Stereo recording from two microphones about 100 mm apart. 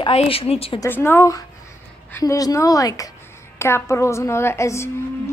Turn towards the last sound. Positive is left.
turn(degrees=30)  # may be behind; listen again after turning